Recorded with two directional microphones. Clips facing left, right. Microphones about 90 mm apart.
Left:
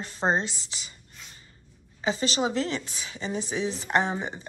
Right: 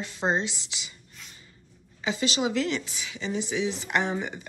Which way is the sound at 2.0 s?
35° left (ahead or behind).